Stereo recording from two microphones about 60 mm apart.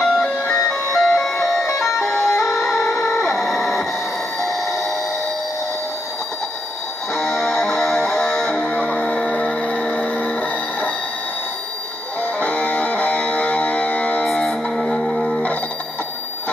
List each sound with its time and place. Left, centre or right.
0.0 s music: centre
2.1 s music: left
2.4 s music: centre
7.2 s music: centre
9.0 s a sound: centre
12.2 s music: left
14.2 s music: centre